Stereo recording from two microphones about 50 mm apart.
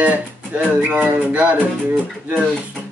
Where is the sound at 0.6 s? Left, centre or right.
Right.